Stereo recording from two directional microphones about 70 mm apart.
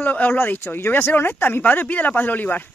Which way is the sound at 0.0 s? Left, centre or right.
Left.